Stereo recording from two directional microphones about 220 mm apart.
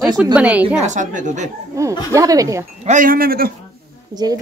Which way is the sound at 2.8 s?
40° right (ahead or behind).